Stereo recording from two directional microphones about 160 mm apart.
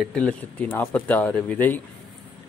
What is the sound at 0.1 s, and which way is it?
Speech, 10° left (ahead or behind).